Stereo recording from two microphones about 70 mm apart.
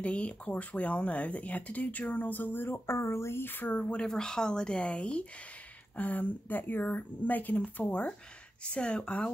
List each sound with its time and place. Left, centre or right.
0.0 s speech: centre
4.0 s speech: centre